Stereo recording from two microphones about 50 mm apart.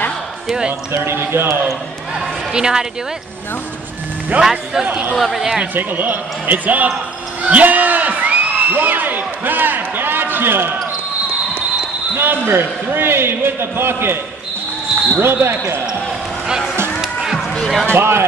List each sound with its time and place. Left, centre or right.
0.9 s a man's voice: right
2.1 s a woman's voice: centre
4.4 s a man's voice: centre
4.8 s speech: right
5.1 s speech: centre
5.8 s speech: right
7.4 s a sound: right
12.2 s a man's voice: right
15.1 s speech: right
16.4 s speech: centre
17.0 s music: centre
17.6 s basketball bounce: centre
17.8 s a man's voice: right